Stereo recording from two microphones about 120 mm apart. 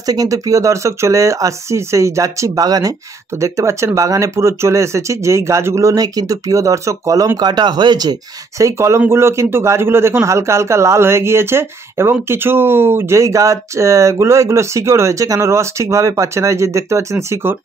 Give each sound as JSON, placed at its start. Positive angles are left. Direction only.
{"t": 0.0, "sound": "a man's voice", "side_deg": -30}